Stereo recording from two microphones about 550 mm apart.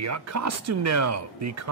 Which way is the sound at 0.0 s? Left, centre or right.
Right.